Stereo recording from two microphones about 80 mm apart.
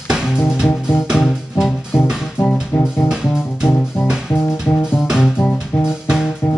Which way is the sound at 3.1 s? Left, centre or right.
Centre.